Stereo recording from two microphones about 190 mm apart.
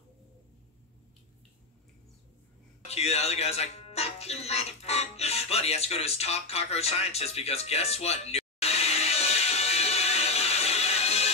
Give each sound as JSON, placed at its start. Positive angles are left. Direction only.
{"t": 2.9, "sound": "speech", "side_deg": 35}